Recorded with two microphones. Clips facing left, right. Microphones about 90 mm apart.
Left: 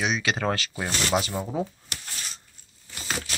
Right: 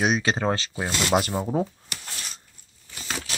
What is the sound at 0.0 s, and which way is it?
Speech, 40° right (ahead or behind).